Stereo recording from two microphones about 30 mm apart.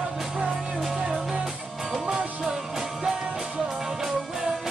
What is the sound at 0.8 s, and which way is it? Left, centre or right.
Music, centre.